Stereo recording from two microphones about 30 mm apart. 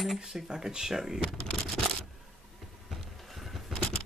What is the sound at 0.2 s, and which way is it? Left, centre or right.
Speech, centre.